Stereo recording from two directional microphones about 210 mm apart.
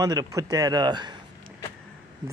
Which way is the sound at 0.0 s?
15° right (ahead or behind).